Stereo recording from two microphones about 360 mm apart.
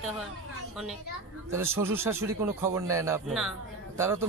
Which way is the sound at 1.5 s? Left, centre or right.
Centre.